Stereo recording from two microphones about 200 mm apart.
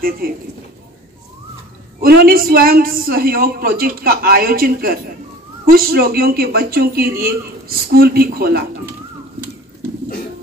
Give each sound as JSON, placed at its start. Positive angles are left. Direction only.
{"t": 2.0, "sound": "a man's voice", "side_deg": -50}